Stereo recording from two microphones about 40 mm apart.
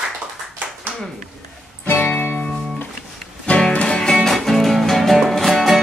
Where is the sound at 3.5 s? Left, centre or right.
Left.